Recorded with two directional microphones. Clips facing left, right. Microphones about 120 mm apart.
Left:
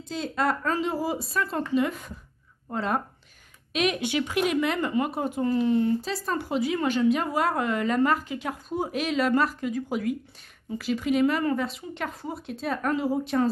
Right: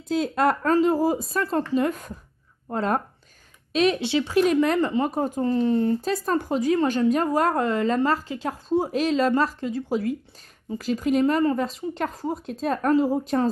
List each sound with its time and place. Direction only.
0.4 s a woman's voice: 45° right (ahead or behind)
5.9 s a woman's voice: 50° right (ahead or behind)